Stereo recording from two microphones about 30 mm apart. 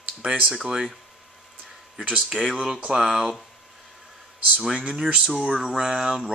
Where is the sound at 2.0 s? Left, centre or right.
Right.